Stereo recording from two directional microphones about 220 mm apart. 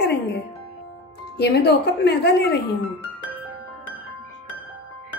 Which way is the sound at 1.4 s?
50° left (ahead or behind).